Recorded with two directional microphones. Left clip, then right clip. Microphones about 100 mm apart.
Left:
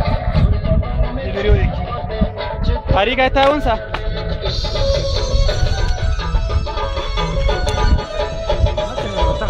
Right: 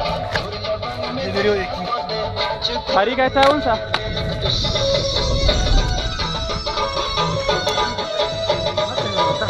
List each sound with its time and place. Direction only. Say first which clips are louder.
1.3 s music: right 1 dB; 35° right (ahead or behind)
3.0 s speech: left 2 dB; 5° left (ahead or behind)
4.7 s music: left 2 dB; 45° left (ahead or behind)
6.8 s music: right 2 dB; 40° left (ahead or behind)